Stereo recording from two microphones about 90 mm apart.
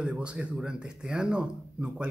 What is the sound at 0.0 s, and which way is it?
Speech, 10° right (ahead or behind).